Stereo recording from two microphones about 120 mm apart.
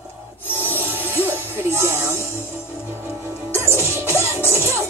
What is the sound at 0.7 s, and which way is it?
Music, 20° right (ahead or behind).